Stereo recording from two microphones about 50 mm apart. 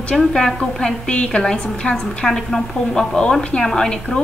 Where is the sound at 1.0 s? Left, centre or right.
Centre.